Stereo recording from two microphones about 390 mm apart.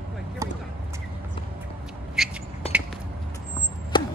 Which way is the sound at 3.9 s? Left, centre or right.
Centre.